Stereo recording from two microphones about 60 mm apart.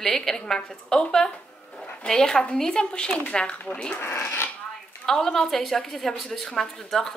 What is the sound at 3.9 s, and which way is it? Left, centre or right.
Speech, left.